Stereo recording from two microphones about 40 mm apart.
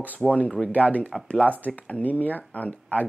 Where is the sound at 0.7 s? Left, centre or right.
Left.